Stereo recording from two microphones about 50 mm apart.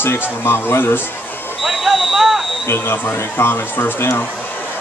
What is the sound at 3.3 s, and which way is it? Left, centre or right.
Speech, left.